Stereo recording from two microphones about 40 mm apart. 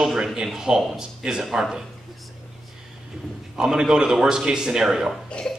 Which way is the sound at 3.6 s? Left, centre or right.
Centre.